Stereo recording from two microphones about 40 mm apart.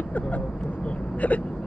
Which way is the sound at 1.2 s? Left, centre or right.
Left.